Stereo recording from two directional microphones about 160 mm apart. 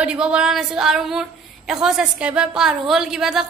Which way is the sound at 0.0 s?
5° right (ahead or behind).